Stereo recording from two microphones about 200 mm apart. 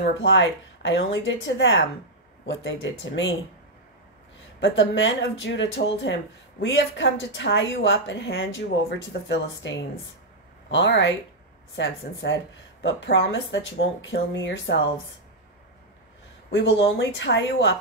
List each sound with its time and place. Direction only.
0.0 s a woman's voice: 65° left (ahead or behind)
4.6 s a woman's voice: 65° left (ahead or behind)
16.5 s speech: 65° left (ahead or behind)